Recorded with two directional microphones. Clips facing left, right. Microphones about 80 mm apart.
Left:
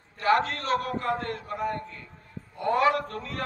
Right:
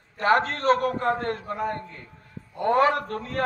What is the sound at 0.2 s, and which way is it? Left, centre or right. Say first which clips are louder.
A man's voice: right 2 dB; right.